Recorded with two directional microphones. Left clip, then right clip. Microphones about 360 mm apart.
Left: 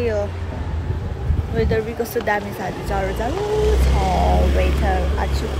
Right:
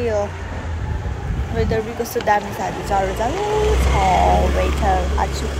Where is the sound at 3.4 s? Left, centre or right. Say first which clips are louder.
Left 1 dB; centre.